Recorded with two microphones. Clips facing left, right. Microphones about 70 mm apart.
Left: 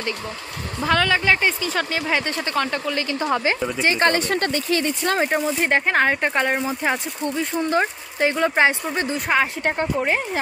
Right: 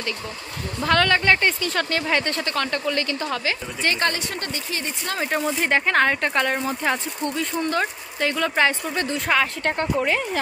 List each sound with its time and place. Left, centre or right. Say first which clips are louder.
0.7 s speech: even; centre
3.2 s speech: left 5 dB; left
4.0 s speech: left 6 dB; left
5.4 s speech: left 1 dB; centre
10.0 s speech: left 1 dB; left